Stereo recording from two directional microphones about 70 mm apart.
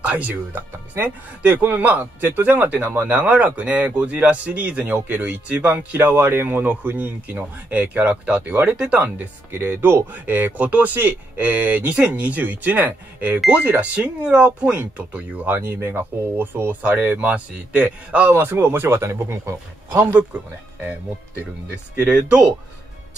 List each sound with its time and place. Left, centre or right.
0.0 s speech: right
6.0 s speech: right; by 9.0 s centre
9.0 s speech: right
18.3 s speech: right
21.6 s speech: centre